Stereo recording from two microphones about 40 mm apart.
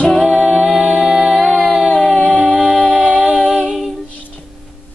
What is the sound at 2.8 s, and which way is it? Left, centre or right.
Music, centre.